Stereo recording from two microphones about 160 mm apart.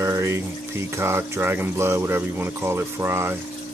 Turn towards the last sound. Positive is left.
turn(degrees=-15)  # may be behind; listen again after turning